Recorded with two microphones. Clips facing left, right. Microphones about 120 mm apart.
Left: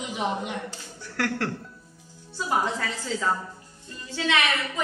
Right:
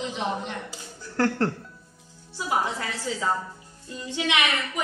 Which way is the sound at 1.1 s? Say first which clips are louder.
Right 4 dB; 30° right (ahead or behind).